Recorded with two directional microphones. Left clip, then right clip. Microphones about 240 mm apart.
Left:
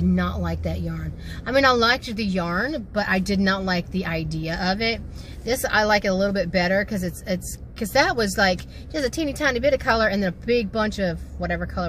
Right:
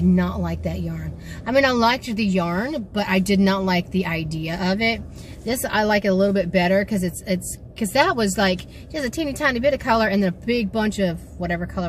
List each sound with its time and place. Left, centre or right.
0.1 s speech: centre